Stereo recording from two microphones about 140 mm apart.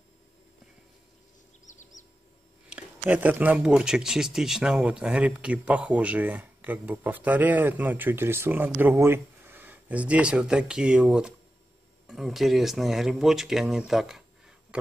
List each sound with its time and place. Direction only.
1.7 s bird: 65° left (ahead or behind)
2.7 s speech: 10° right (ahead or behind)